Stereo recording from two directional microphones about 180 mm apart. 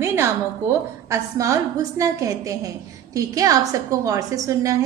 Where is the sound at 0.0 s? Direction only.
15° right (ahead or behind).